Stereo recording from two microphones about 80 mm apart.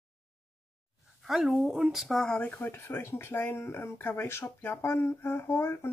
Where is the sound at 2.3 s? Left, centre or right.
Left.